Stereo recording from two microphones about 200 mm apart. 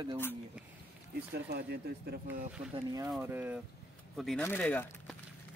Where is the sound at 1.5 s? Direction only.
55° right (ahead or behind).